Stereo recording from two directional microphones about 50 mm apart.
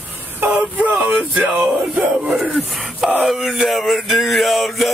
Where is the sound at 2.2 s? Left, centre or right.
Centre.